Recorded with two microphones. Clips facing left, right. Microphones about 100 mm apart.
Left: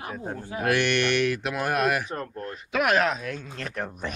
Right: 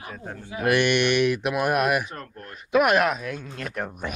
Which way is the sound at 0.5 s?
15° right (ahead or behind).